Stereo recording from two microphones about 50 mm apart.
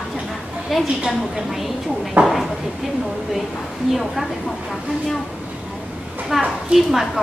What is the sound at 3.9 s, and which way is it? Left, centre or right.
Speech, centre.